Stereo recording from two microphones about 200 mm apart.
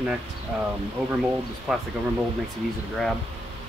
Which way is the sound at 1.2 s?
5° right (ahead or behind).